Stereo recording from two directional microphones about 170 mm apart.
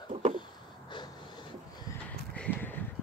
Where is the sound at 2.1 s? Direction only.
10° left (ahead or behind).